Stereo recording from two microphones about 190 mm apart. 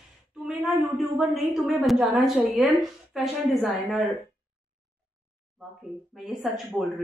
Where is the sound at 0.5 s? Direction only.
Centre (ahead or behind).